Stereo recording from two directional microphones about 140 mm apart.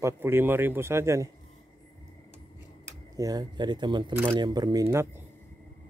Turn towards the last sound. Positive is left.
turn(degrees=-20)  # may be behind; listen again after turning